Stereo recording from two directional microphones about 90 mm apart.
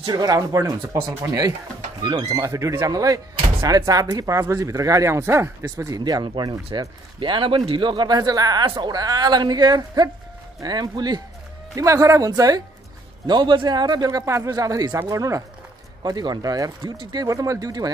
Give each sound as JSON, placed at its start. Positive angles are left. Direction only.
{"t": 0.0, "sound": "a man's voice", "side_deg": -50}
{"t": 2.0, "sound": "speech", "side_deg": -55}
{"t": 2.3, "sound": "speech", "side_deg": -35}
{"t": 6.2, "sound": "a man's voice", "side_deg": -60}
{"t": 7.2, "sound": "a man's voice", "side_deg": -70}
{"t": 11.7, "sound": "speech", "side_deg": -40}
{"t": 13.3, "sound": "a man's voice", "side_deg": -60}
{"t": 16.0, "sound": "a man's voice", "side_deg": -50}
{"t": 16.8, "sound": "a man's voice", "side_deg": -65}